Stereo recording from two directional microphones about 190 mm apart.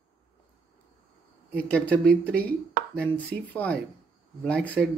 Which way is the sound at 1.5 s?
5° left (ahead or behind).